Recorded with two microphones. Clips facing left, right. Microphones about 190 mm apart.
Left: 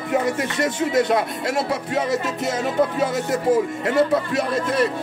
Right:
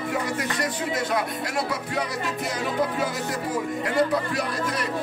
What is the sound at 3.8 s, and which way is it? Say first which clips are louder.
Speech: left 4 dB; 25° left (ahead or behind).